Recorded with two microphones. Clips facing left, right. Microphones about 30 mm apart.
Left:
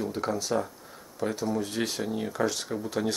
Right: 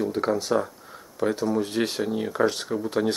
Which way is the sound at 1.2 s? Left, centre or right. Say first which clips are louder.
Right 5 dB; right.